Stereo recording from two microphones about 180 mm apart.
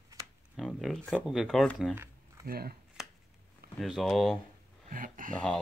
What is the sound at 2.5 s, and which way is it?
Speech, 55° right (ahead or behind).